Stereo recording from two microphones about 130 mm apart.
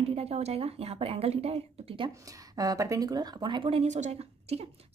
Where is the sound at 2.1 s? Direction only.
25° right (ahead or behind).